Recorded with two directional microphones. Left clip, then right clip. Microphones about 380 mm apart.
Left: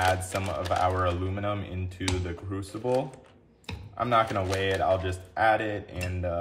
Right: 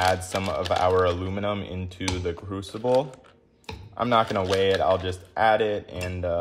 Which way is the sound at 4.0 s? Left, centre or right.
Centre.